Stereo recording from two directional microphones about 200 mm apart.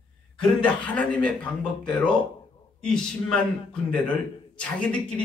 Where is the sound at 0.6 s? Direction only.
5° left (ahead or behind).